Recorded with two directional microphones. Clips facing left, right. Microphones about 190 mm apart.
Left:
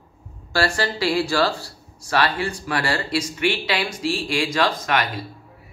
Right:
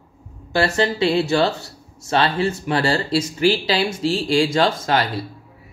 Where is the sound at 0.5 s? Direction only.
20° right (ahead or behind).